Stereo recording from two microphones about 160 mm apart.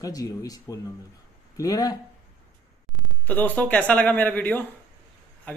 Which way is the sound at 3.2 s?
10° left (ahead or behind).